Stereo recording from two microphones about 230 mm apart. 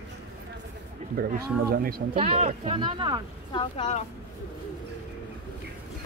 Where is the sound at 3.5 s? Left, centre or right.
Left.